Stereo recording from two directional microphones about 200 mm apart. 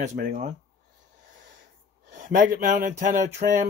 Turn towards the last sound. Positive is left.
turn(degrees=-45)  # may be behind; listen again after turning